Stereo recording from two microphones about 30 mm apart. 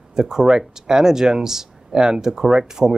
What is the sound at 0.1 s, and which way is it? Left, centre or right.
Speech, right.